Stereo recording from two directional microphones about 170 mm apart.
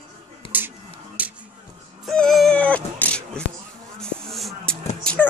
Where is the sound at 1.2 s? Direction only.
10° right (ahead or behind).